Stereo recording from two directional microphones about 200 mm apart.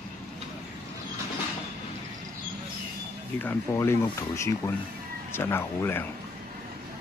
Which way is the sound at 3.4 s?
15° left (ahead or behind).